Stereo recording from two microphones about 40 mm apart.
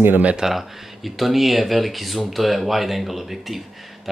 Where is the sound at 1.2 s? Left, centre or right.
Centre.